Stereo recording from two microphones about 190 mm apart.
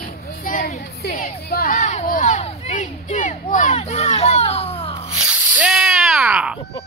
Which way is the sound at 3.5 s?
35° left (ahead or behind).